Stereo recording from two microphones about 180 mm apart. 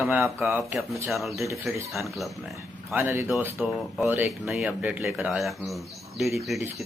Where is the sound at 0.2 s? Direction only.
10° right (ahead or behind).